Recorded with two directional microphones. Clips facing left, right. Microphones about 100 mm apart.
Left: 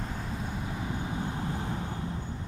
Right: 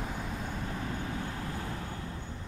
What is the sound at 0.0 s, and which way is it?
Vehicle, centre (ahead or behind).